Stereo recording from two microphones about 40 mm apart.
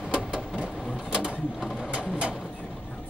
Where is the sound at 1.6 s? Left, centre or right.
Centre.